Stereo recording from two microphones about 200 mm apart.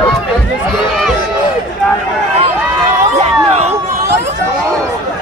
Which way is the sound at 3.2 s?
30° right (ahead or behind).